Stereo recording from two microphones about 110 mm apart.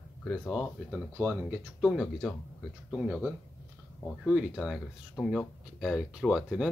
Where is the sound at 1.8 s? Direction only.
Centre (ahead or behind).